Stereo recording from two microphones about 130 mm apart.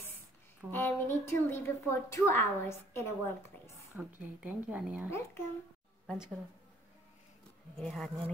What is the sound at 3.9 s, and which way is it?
Speech, 10° right (ahead or behind).